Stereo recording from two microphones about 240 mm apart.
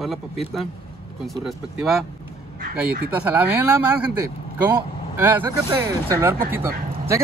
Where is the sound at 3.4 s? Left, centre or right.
Centre.